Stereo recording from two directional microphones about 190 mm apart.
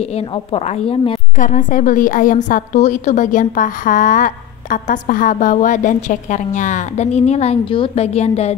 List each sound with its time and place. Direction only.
0.5 s a woman's voice: 30° left (ahead or behind)
1.4 s a woman's voice: 45° left (ahead or behind)